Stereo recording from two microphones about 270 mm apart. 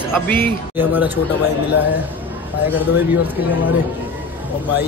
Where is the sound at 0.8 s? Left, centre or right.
Centre.